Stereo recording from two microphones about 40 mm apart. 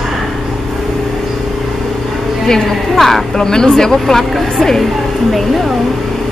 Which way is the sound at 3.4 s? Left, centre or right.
Centre.